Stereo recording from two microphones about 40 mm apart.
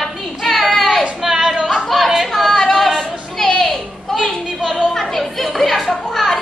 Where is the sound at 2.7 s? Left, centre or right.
Centre.